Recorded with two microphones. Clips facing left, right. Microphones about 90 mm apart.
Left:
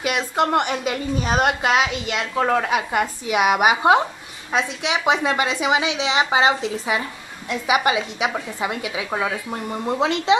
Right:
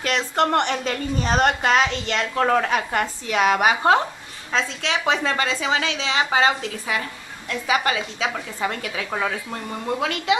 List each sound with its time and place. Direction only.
0.0 s speech: 10° left (ahead or behind); by 10.3 s 25° left (ahead or behind)